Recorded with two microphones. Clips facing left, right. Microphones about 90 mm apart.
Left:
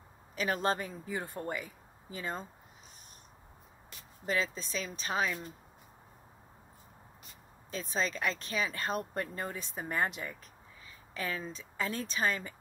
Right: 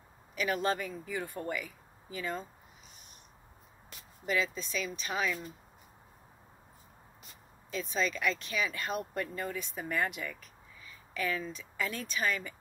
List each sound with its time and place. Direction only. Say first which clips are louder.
0.4 s speech: even; 35° left (ahead or behind)
4.3 s speech: right 1 dB; 35° left (ahead or behind)
7.7 s speech: right 1 dB; 35° left (ahead or behind)